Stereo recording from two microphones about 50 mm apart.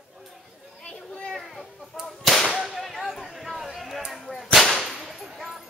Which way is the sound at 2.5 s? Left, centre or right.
Centre.